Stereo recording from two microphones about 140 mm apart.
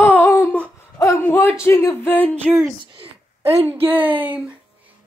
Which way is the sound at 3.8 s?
15° right (ahead or behind).